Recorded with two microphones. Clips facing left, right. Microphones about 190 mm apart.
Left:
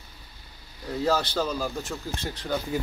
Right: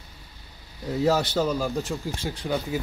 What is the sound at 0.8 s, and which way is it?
Speech, 20° right (ahead or behind).